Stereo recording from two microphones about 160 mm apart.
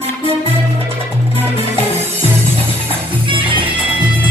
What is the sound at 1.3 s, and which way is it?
Music, 40° right (ahead or behind).